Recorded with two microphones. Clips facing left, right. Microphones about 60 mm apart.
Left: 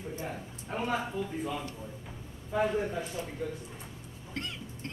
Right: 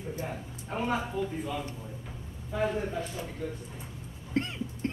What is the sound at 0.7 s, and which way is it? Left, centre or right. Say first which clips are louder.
Speech: right 2 dB; centre.